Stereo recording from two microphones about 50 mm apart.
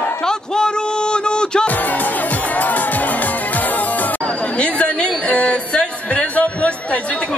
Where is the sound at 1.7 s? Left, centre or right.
Left.